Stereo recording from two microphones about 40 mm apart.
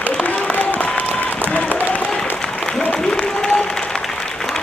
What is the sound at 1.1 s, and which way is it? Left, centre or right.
Applause, left.